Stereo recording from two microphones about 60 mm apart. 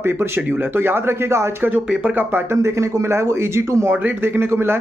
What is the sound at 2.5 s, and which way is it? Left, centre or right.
Speech, right.